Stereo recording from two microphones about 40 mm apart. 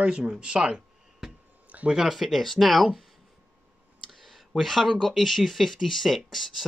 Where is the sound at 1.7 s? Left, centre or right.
Right.